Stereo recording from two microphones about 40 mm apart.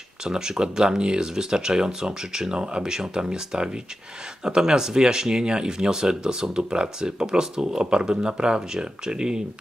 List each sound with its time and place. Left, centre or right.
0.2 s speech: centre